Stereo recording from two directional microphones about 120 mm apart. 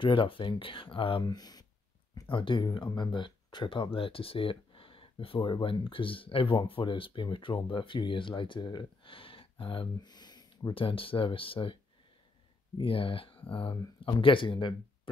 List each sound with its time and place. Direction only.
0.0 s speech: 45° left (ahead or behind)